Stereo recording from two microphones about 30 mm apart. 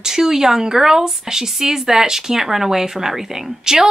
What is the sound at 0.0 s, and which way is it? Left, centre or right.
Speech, centre.